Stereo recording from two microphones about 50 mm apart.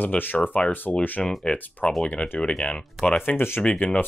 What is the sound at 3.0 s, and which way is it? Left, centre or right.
Speech, left.